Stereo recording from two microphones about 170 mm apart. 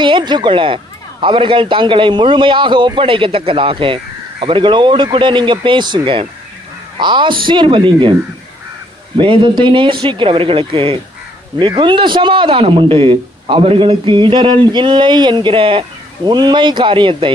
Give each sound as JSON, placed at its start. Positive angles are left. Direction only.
{"t": 0.0, "sound": "a man's voice", "side_deg": -25}
{"t": 9.2, "sound": "a man's voice", "side_deg": -30}